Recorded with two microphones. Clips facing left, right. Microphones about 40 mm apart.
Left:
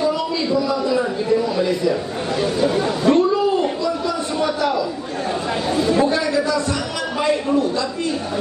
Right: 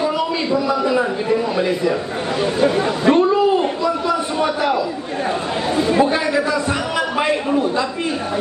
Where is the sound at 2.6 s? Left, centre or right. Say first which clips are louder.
Right 2 dB; right.